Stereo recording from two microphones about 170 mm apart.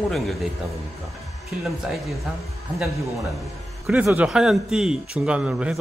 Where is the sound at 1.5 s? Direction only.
Centre (ahead or behind).